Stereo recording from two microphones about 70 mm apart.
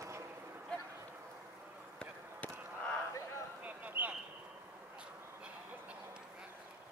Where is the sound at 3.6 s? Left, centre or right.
Right.